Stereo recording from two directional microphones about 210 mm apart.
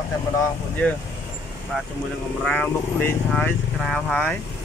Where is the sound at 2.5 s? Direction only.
5° left (ahead or behind).